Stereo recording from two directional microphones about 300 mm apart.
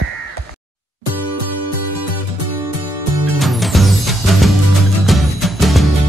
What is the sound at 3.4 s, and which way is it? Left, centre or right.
Music, centre.